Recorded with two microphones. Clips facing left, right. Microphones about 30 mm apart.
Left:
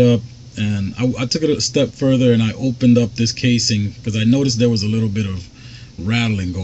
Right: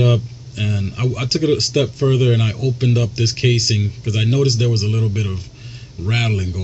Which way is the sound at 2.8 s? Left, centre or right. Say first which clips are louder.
Left 8 dB; centre.